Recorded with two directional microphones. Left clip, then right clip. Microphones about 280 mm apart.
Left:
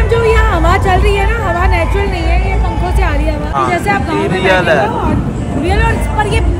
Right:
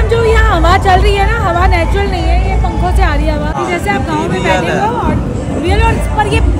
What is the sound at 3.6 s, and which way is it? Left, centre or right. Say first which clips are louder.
Speech: left 5 dB; centre.